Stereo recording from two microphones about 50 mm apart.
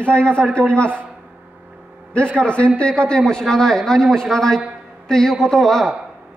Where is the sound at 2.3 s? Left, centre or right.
Left; by 6.0 s centre.